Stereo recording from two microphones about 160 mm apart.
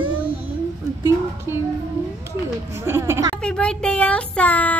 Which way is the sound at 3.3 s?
5° left (ahead or behind).